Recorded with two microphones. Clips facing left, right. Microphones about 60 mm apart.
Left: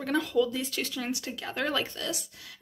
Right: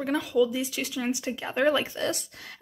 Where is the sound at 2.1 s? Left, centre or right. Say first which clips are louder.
Right 4 dB; right.